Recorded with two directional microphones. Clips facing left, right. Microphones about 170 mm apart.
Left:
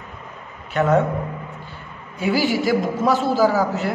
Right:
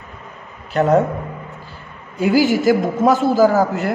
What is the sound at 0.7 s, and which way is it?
Speech, 35° right (ahead or behind).